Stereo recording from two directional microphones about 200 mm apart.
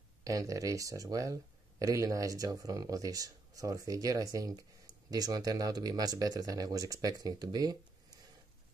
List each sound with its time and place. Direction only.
0.2 s speech: 15° right (ahead or behind)